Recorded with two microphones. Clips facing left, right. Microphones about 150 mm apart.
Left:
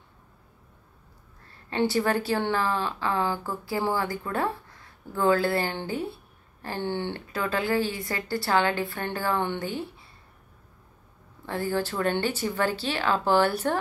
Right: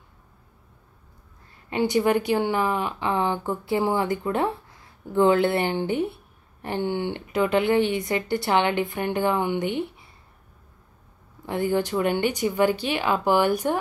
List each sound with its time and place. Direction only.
1.7 s speech: 15° right (ahead or behind)
11.4 s speech: 15° right (ahead or behind)